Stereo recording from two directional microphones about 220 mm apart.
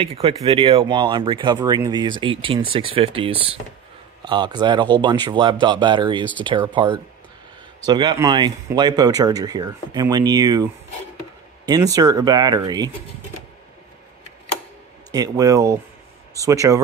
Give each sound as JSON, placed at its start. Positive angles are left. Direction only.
{"t": 0.0, "sound": "speech", "side_deg": -25}
{"t": 15.0, "sound": "speech", "side_deg": -15}